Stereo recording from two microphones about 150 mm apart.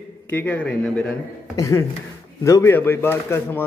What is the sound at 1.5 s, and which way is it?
A man's voice, 20° left (ahead or behind).